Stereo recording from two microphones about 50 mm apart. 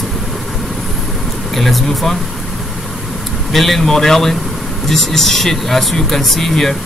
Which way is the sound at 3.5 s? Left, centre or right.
Centre.